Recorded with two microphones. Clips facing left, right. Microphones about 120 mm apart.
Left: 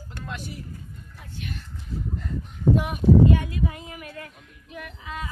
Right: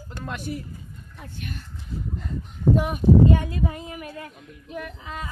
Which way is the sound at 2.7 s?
35° right (ahead or behind).